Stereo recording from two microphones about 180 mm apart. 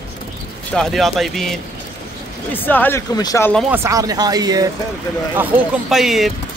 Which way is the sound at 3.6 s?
15° right (ahead or behind).